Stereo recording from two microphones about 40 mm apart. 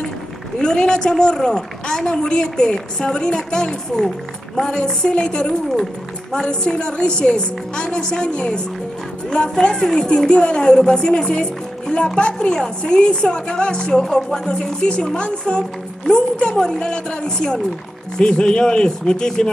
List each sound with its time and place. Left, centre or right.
0.6 s a woman's voice: centre